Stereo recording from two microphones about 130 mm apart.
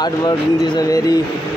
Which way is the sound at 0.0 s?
30° left (ahead or behind).